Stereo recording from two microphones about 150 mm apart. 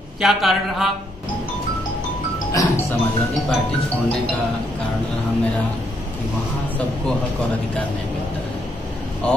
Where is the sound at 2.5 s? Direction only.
20° left (ahead or behind).